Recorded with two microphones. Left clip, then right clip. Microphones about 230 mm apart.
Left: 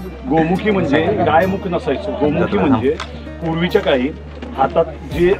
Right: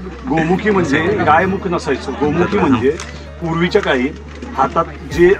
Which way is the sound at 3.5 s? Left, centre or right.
Right.